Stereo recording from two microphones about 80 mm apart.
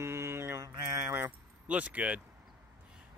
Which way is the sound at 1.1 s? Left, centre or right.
Right.